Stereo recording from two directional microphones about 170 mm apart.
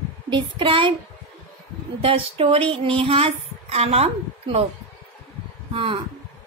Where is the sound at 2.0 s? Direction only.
35° right (ahead or behind).